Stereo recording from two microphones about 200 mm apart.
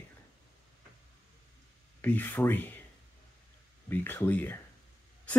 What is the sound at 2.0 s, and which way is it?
Speech, 10° left (ahead or behind).